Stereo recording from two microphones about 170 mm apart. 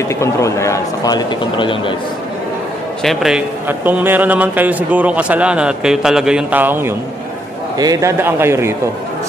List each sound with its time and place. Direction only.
0.1 s a man's voice: 15° left (ahead or behind)
3.0 s a man's voice: centre (ahead or behind)